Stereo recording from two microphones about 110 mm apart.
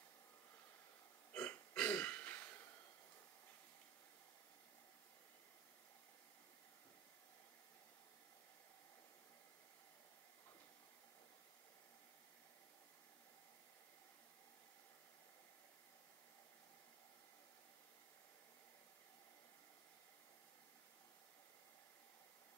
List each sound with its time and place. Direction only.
1.3 s burping: 15° left (ahead or behind)